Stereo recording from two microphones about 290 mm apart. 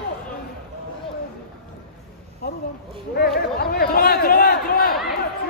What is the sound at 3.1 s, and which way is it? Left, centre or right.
Crowd, left.